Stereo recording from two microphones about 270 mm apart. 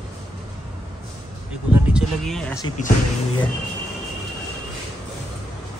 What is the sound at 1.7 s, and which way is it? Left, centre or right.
Speech, centre.